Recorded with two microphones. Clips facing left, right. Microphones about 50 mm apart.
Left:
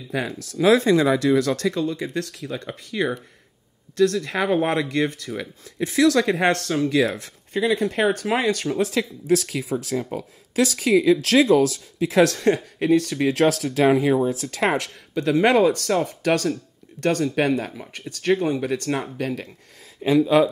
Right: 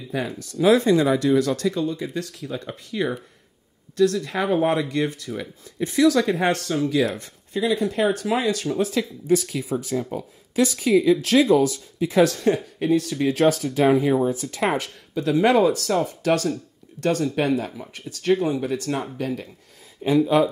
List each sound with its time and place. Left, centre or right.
0.1 s speech: left
7.5 s speech: left
8.7 s speech: left
12.7 s speech: left
15.2 s speech: left
18.6 s speech: left
20.0 s speech: left